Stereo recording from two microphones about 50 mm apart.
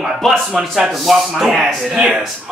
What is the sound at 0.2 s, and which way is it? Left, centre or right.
Speech, centre.